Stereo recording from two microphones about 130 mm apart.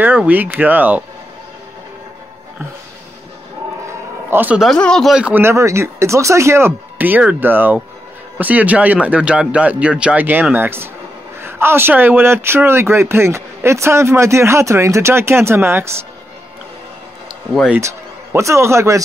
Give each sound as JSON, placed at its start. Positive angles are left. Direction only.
{"t": 0.0, "sound": "speech", "side_deg": -15}
{"t": 3.8, "sound": "a sound", "side_deg": -15}
{"t": 4.6, "sound": "speech", "side_deg": 5}
{"t": 5.1, "sound": "speech", "side_deg": -10}
{"t": 5.4, "sound": "speech", "side_deg": -20}
{"t": 17.7, "sound": "speech", "side_deg": -20}